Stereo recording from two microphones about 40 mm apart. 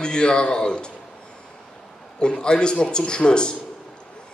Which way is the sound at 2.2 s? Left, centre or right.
Left.